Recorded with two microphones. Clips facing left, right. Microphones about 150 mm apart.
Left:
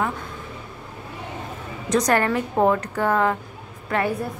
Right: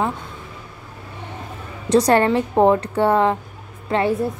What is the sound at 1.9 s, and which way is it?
A woman's voice, 30° right (ahead or behind).